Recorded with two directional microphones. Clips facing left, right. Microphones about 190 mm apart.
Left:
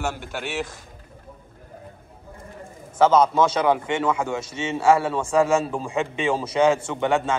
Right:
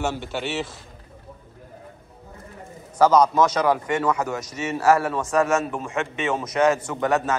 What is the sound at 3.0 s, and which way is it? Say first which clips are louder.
A man's voice: even; 25° left (ahead or behind).